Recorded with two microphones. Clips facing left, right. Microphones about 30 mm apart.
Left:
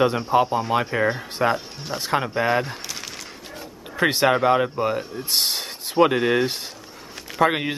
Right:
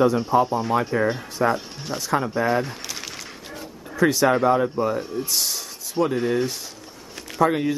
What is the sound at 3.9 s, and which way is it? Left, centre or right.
Speech, left.